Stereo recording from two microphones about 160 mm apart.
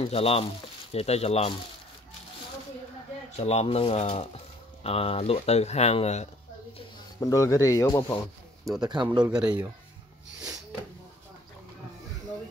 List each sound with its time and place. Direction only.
0.0 s speech: 35° left (ahead or behind)
3.3 s speech: 40° left (ahead or behind)
7.2 s speech: 20° left (ahead or behind)
8.7 s speech: 25° right (ahead or behind)
9.2 s speech: 5° right (ahead or behind)